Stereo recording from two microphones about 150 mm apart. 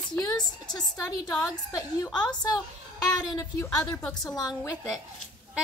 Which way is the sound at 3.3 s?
20° left (ahead or behind).